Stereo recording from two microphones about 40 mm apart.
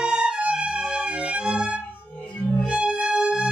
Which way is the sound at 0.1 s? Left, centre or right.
Right.